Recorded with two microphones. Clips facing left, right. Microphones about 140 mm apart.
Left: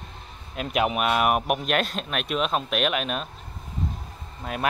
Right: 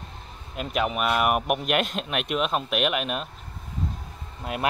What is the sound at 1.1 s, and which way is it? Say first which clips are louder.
Speech: left 1 dB; centre (ahead or behind).